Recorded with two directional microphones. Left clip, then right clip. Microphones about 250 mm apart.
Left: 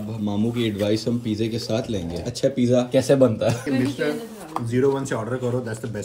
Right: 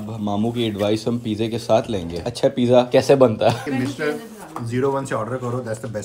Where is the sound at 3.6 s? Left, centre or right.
Centre.